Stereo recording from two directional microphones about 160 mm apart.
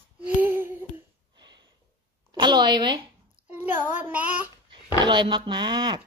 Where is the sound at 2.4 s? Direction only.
25° right (ahead or behind).